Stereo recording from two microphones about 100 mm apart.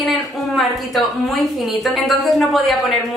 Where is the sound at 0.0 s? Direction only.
Centre (ahead or behind).